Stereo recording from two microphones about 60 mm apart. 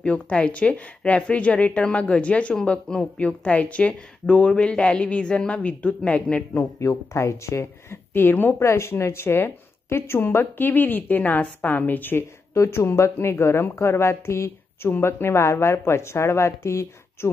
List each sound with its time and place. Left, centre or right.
0.0 s a woman's voice: left
6.6 s a woman's voice: left
8.1 s speech: left
8.5 s speech: left
12.5 s a woman's voice: left
14.9 s a woman's voice: left